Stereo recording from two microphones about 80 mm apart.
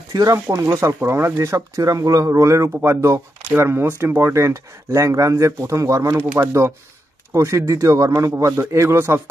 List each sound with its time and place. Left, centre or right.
0.1 s speech: right
4.2 s speech: right
7.3 s speech: right